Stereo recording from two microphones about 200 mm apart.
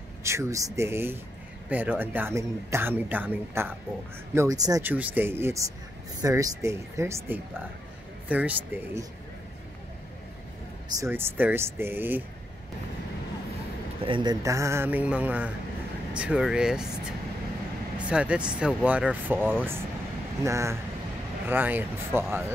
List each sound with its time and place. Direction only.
0.2 s speech: 15° right (ahead or behind)
10.9 s speech: 15° right (ahead or behind)
14.0 s speech: 25° right (ahead or behind)